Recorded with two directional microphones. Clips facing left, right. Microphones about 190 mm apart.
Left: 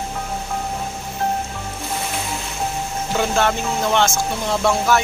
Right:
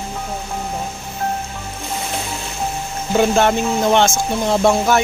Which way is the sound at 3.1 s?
20° right (ahead or behind).